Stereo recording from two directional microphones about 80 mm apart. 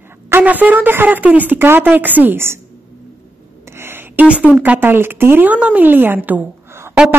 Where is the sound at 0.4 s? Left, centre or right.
Centre.